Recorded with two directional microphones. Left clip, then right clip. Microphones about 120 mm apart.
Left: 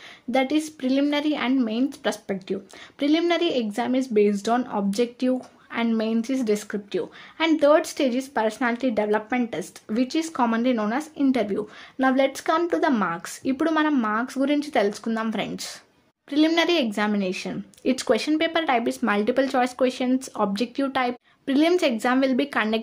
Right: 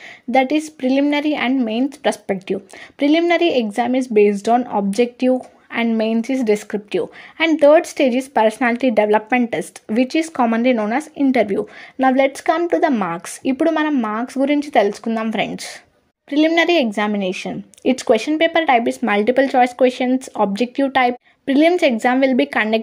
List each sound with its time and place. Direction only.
0.3 s a woman's voice: 35° right (ahead or behind)
2.2 s speech: 55° right (ahead or behind)
3.0 s a woman's voice: 35° right (ahead or behind)
7.4 s a woman's voice: 35° right (ahead or behind)
13.0 s a woman's voice: 40° right (ahead or behind)
13.7 s a woman's voice: 25° right (ahead or behind)